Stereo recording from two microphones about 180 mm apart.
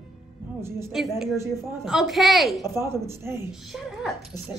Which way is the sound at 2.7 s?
15° right (ahead or behind).